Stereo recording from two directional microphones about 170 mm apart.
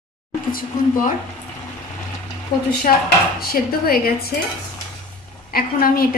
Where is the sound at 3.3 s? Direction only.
60° left (ahead or behind).